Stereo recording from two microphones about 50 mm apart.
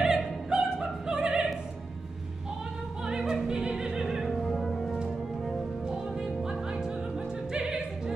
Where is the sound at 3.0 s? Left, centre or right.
Centre.